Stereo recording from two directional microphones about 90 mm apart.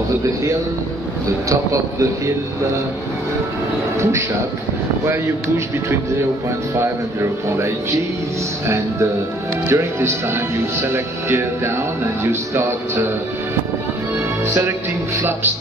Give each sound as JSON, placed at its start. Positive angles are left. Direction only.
{"t": 1.5, "sound": "speech", "side_deg": -35}
{"t": 6.7, "sound": "speech", "side_deg": -25}
{"t": 14.1, "sound": "music", "side_deg": -30}